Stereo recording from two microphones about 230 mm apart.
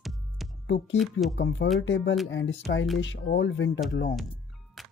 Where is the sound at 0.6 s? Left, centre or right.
Left.